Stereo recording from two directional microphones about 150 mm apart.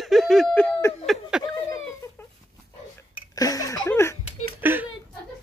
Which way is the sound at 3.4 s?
25° left (ahead or behind).